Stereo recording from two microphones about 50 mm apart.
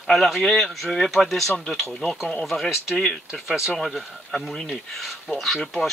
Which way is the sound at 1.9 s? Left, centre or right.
Centre.